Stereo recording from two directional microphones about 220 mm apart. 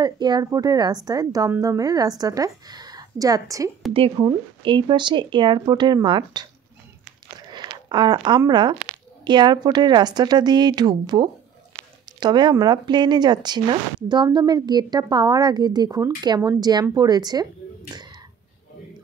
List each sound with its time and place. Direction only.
0.0 s a woman's voice: 20° right (ahead or behind)
7.5 s a woman's voice: 20° right (ahead or behind)